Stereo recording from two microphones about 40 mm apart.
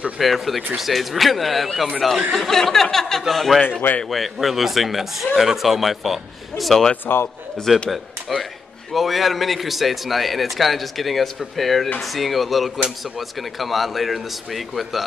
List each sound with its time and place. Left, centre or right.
0.2 s a man's voice: centre
7.1 s a man's voice: left
7.9 s a man's voice: centre